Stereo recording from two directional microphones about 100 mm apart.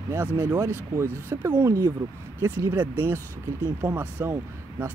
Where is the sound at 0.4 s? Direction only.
35° right (ahead or behind).